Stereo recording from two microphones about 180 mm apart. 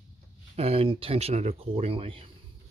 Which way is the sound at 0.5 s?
35° right (ahead or behind).